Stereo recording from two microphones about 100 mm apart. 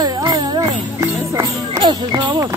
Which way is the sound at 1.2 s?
30° right (ahead or behind).